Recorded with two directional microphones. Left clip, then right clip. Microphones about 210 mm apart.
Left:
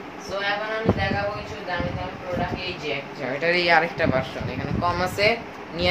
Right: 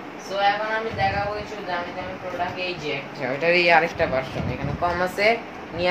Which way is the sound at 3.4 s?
10° left (ahead or behind).